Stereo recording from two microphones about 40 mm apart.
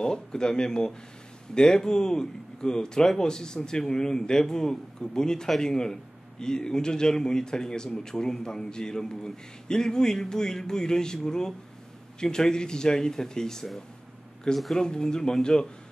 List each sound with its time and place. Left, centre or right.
0.0 s a man's voice: centre